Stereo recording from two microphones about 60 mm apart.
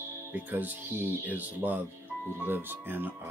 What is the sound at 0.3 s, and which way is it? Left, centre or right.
Speech, right.